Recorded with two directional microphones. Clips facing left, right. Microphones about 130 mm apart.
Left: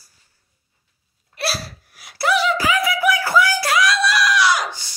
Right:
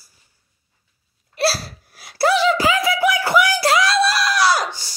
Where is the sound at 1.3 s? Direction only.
30° right (ahead or behind).